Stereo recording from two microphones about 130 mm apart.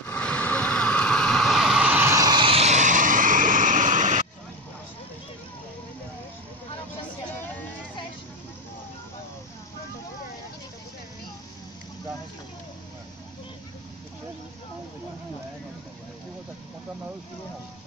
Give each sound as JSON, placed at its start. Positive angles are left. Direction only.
{"t": 0.1, "sound": "vehicle", "side_deg": 10}
{"t": 2.6, "sound": "vehicle", "side_deg": -65}